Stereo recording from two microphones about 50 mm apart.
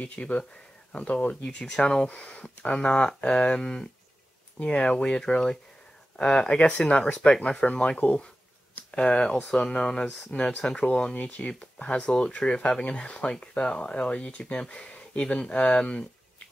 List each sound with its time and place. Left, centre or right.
0.0 s speech: left
10.3 s speech: left
11.1 s speech: left
11.4 s speech: left